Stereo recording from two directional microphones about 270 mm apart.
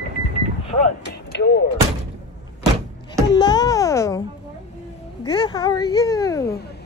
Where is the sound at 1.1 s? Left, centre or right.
Left.